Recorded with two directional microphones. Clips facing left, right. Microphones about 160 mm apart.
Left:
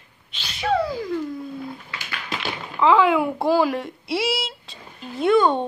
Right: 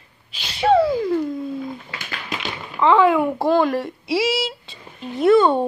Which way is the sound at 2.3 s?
Centre (ahead or behind).